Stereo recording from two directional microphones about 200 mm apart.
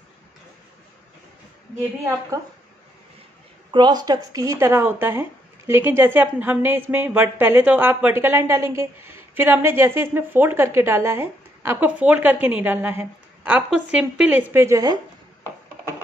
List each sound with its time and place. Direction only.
3.7 s a woman's voice: 20° right (ahead or behind)